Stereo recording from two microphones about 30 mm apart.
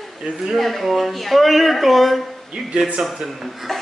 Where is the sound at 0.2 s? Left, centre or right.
Right.